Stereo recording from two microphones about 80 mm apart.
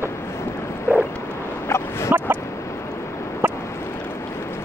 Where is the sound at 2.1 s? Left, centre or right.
Centre.